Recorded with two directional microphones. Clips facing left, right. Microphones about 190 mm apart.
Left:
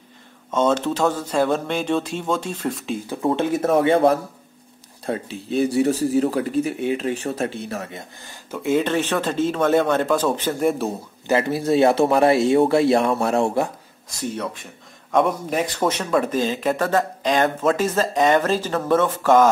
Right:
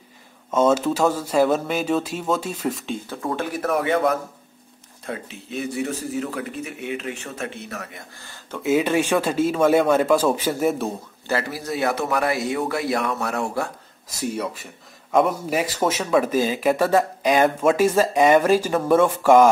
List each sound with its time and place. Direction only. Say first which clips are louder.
0.5 s a man's voice: right 1 dB; 5° right (ahead or behind)
3.1 s speech: left 7 dB; 20° left (ahead or behind)
8.6 s a man's voice: right 1 dB; 10° right (ahead or behind)
11.2 s speech: left 6 dB; 20° left (ahead or behind)
14.2 s a man's voice: right 1 dB; 10° right (ahead or behind)